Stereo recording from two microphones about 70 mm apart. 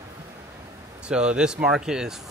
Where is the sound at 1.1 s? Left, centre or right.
Centre.